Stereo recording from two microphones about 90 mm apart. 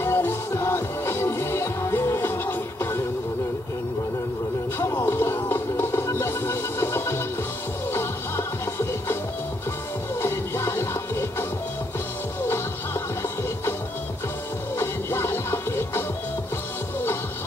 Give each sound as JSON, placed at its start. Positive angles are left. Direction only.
{"t": 0.0, "sound": "music", "side_deg": 25}
{"t": 4.7, "sound": "music", "side_deg": 25}
{"t": 10.2, "sound": "music", "side_deg": 30}
{"t": 14.8, "sound": "music", "side_deg": 25}